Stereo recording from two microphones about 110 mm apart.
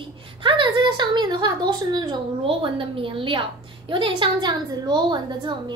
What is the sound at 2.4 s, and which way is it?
A woman's voice, 55° right (ahead or behind).